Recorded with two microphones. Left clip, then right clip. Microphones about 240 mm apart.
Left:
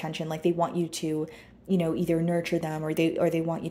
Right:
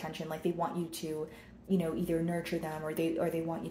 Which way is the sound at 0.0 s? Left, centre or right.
Left.